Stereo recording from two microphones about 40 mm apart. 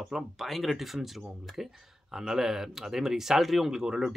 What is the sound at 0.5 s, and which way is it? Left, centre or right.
Speech, centre.